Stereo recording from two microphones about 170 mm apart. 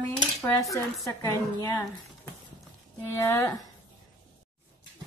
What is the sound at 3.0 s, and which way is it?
Speech, 15° left (ahead or behind).